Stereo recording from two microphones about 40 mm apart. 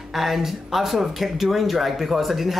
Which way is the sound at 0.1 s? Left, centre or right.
Centre.